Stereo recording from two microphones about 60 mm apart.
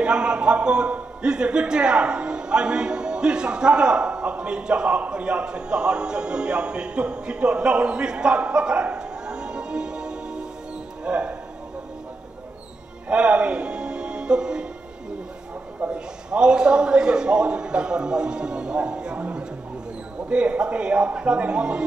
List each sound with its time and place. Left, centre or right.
0.0 s a man's voice: centre
13.1 s speech: centre
15.9 s a man's voice: centre